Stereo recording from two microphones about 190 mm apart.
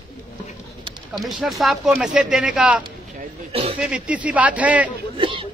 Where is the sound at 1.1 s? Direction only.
Centre (ahead or behind).